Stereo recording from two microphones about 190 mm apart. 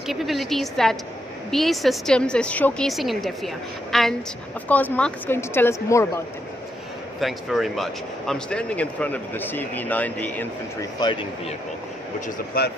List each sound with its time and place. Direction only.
0.0 s a woman's voice: centre (ahead or behind); by 6.2 s 15° left (ahead or behind)
7.2 s speech: centre (ahead or behind)
11.0 s speech: 25° left (ahead or behind)
12.6 s speech: 50° left (ahead or behind)